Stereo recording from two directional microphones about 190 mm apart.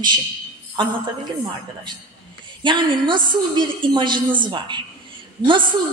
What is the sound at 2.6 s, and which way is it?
A woman's voice, 25° right (ahead or behind).